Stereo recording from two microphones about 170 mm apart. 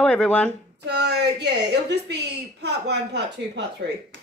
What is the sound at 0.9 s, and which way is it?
A woman's voice, 90° right.